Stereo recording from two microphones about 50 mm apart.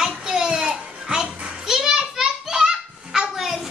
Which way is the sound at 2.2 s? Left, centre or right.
Centre.